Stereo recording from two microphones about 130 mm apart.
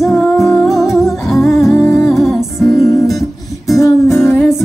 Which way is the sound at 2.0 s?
Centre (ahead or behind).